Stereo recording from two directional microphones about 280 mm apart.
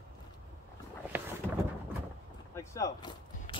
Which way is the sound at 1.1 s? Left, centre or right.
Centre.